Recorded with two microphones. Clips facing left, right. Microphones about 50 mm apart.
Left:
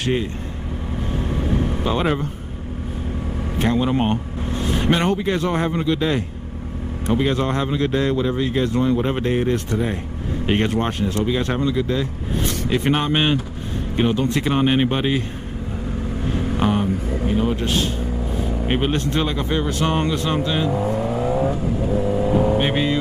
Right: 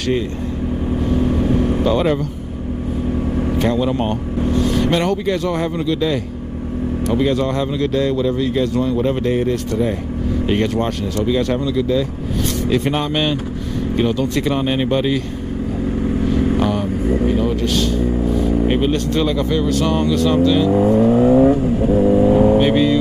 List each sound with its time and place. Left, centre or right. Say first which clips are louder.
1.8 s speech: right 3 dB; centre
3.5 s speech: even; centre
10.4 s speech: right 1 dB; left
16.5 s vehicle: right 2 dB; left
17.4 s speech: right 3 dB; left
20.7 s vehicle: right 9 dB; right
22.6 s speech: right 6 dB; left